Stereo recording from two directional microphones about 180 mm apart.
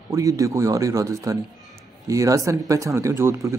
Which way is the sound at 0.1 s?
20° right (ahead or behind).